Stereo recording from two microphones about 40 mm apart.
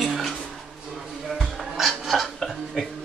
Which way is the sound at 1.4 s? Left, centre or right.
Centre.